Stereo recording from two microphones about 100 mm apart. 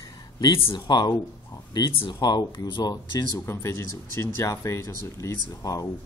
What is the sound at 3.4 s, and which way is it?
Speech, 30° left (ahead or behind).